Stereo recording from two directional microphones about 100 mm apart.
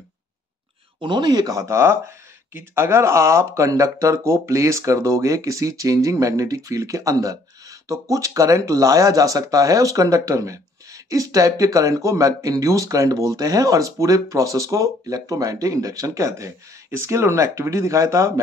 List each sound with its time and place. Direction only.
0.9 s speech: 50° right (ahead or behind); by 18.4 s 30° right (ahead or behind)